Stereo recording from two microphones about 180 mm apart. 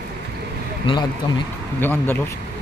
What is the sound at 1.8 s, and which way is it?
Speech, 10° left (ahead or behind).